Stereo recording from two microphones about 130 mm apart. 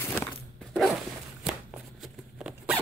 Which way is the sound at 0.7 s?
Centre (ahead or behind).